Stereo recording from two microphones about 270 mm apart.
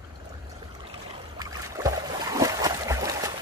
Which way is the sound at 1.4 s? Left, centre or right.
Centre.